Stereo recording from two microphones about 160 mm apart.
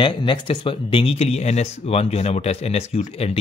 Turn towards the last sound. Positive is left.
turn(degrees=40)  # may be behind; listen again after turning